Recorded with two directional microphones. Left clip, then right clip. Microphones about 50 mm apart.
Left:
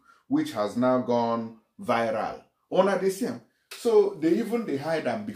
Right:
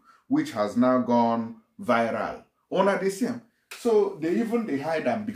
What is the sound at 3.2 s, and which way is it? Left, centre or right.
Speech, right.